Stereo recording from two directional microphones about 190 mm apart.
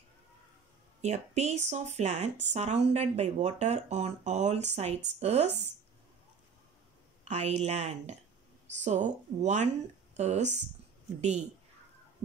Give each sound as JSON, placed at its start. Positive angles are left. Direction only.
{"t": 1.0, "sound": "speech", "side_deg": -35}
{"t": 7.2, "sound": "speech", "side_deg": -35}